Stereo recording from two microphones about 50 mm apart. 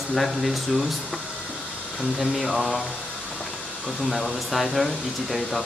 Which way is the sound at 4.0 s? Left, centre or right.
Centre.